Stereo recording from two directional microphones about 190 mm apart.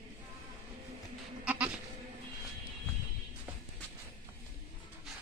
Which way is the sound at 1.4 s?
5° right (ahead or behind).